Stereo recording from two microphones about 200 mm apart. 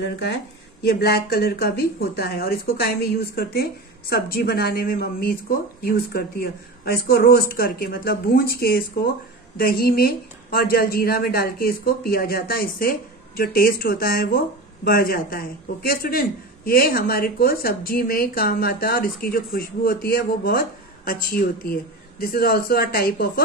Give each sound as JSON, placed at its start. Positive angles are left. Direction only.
{"t": 0.8, "sound": "speech", "side_deg": 50}